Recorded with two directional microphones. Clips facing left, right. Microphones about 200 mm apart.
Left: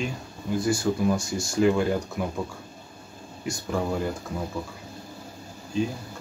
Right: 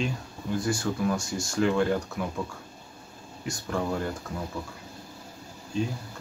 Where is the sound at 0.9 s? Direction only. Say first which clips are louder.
Left 4 dB; 10° left (ahead or behind).